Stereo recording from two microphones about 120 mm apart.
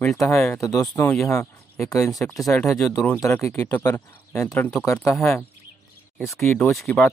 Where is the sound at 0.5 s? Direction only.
30° left (ahead or behind).